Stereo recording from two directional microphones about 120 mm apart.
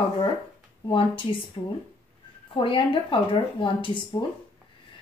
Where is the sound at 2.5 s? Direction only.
45° left (ahead or behind).